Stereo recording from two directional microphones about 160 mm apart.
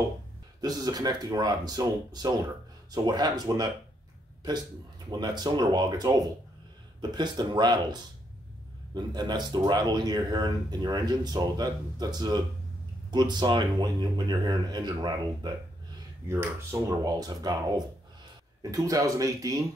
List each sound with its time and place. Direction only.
0.6 s speech: 25° right (ahead or behind)
5.1 s speech: 25° right (ahead or behind)
17.0 s speech: 25° right (ahead or behind)